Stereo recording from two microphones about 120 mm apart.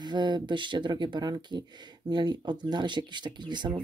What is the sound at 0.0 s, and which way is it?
Speech, 40° right (ahead or behind).